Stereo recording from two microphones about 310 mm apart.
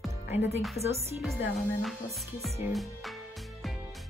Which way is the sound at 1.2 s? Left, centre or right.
Centre.